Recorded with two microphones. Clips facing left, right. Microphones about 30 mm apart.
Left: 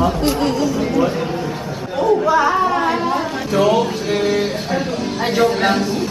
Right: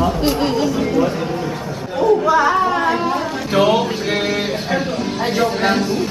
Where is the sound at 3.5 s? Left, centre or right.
Right.